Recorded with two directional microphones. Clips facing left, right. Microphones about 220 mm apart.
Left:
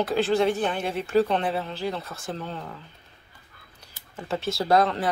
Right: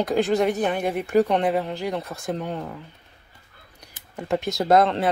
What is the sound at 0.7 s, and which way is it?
Speech, 15° right (ahead or behind).